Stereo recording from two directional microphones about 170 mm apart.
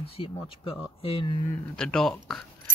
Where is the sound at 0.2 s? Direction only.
30° left (ahead or behind).